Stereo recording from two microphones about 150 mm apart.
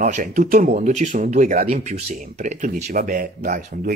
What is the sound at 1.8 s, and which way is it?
Speech, 50° right (ahead or behind).